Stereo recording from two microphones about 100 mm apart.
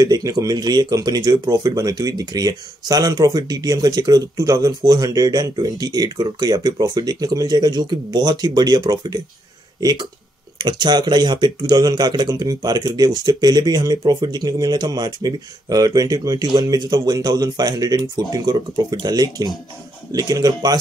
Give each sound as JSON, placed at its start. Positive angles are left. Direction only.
{"t": 0.0, "sound": "speech", "side_deg": -40}